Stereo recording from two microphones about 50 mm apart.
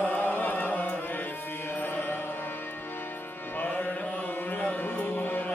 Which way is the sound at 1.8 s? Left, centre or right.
Left.